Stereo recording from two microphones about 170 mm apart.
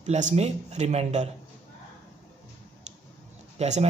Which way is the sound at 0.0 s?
45° right (ahead or behind).